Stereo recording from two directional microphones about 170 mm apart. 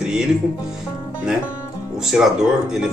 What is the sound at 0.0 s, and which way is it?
Music, 5° right (ahead or behind).